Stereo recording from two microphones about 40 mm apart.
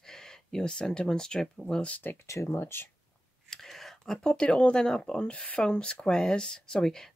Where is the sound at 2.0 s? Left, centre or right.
Left.